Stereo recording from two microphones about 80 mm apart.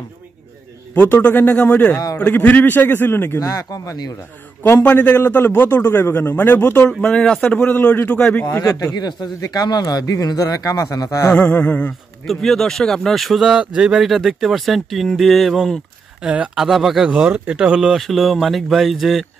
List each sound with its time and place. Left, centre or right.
0.9 s a man's voice: left
3.3 s speech: left
4.8 s a man's voice: left
6.9 s speech: centre
7.7 s a man's voice: left
8.9 s speech: left
11.3 s speech: centre
12.3 s speech: centre
17.1 s speech: centre
17.9 s speech: centre